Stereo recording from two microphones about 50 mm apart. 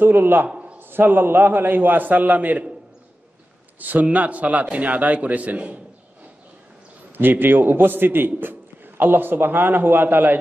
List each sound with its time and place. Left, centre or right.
0.0 s a man's voice: right
0.5 s a sound: right
0.7 s a man's voice: right
3.8 s speech: right
7.2 s a man's voice: right